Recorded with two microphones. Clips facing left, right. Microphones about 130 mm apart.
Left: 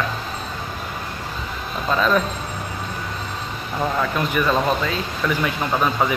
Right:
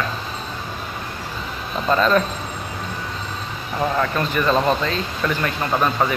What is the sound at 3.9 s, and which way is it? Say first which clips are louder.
Speech: left 1 dB; 10° left (ahead or behind).